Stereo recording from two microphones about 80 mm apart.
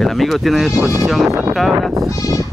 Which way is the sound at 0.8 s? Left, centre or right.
Right.